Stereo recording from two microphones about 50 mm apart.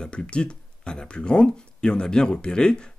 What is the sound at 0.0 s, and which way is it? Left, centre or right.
Speech, centre.